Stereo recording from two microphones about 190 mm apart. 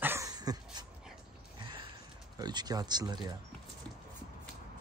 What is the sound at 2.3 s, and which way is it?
Speech, 20° right (ahead or behind).